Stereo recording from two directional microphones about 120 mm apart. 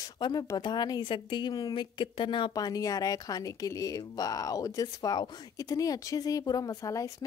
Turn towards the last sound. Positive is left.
turn(degrees=30)  # may be behind; listen again after turning